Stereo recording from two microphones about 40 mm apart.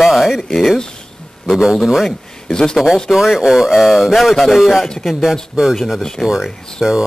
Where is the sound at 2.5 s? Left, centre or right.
Centre.